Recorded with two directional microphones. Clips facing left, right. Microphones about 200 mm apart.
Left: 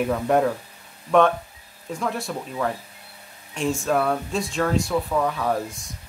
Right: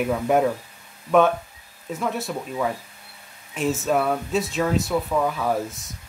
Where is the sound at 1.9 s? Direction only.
Centre (ahead or behind).